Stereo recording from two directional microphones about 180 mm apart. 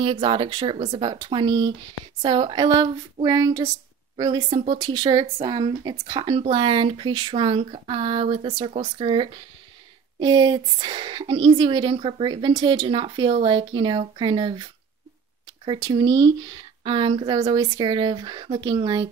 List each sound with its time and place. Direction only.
0.0 s a woman's voice: 30° right (ahead or behind)